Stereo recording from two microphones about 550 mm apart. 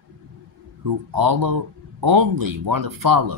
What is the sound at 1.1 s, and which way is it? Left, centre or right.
Speech, right.